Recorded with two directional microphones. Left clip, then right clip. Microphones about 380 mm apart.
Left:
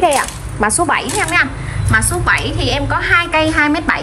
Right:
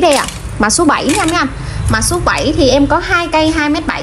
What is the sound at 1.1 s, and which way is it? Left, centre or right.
A woman's voice, centre.